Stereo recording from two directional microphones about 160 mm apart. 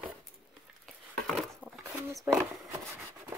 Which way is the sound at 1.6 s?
10° right (ahead or behind).